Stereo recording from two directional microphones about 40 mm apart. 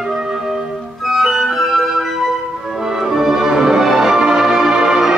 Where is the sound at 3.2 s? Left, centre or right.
Centre.